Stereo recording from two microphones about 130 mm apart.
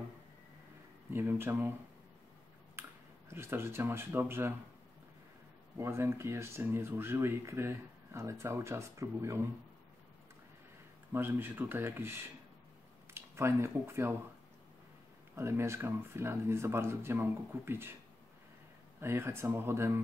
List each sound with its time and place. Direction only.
1.1 s speech: 20° right (ahead or behind)
3.3 s speech: 20° right (ahead or behind)
5.8 s speech: 20° right (ahead or behind)
11.1 s speech: 15° right (ahead or behind)
15.3 s speech: 20° right (ahead or behind)
18.9 s speech: 20° right (ahead or behind)